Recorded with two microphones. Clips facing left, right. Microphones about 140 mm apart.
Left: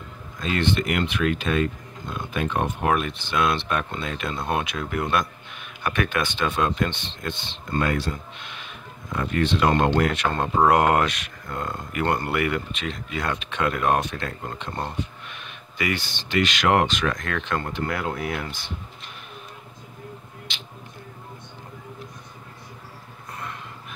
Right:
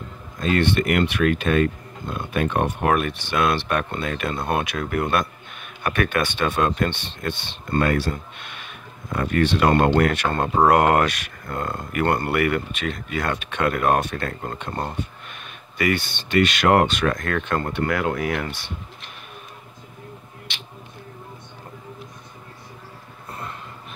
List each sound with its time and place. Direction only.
0.4 s speech: 50° right (ahead or behind)
17.8 s speech: 85° right